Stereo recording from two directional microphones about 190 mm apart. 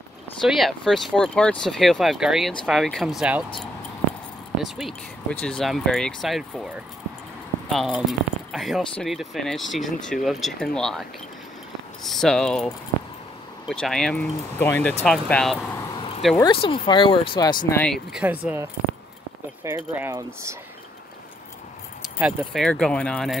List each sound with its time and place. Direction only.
0.4 s speech: centre (ahead or behind)
4.6 s speech: centre (ahead or behind)
7.7 s speech: centre (ahead or behind)
16.3 s speech: 25° left (ahead or behind)
17.7 s speech: centre (ahead or behind); by 20.5 s 15° right (ahead or behind)
22.2 s speech: 5° right (ahead or behind)